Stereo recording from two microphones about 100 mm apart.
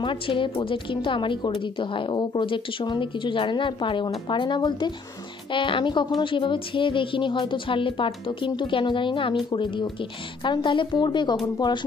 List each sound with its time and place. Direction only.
0.0 s a woman's voice: 55° left (ahead or behind)